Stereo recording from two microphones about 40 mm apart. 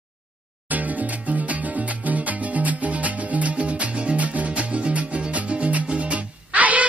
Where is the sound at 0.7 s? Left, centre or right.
Right.